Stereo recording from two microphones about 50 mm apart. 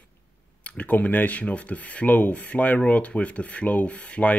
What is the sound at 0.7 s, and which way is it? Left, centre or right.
Speech, left.